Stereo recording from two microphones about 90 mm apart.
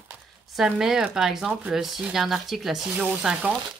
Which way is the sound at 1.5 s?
15° right (ahead or behind).